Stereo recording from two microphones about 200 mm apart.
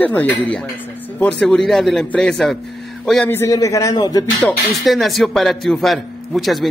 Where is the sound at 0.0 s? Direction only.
10° left (ahead or behind).